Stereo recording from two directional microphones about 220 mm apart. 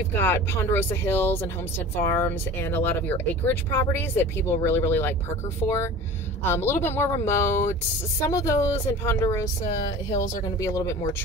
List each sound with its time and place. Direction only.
0.1 s speech: 10° left (ahead or behind)
9.7 s speech: 35° left (ahead or behind)
10.6 s speech: 15° left (ahead or behind)